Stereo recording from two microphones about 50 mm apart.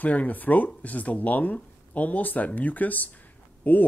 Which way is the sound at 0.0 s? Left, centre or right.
Left.